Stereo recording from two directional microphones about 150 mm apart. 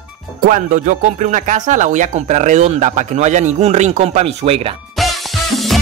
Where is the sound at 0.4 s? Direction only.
65° right (ahead or behind); by 4.7 s 40° right (ahead or behind).